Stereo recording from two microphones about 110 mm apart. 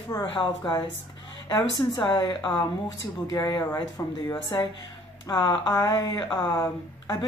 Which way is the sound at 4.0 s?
25° left (ahead or behind).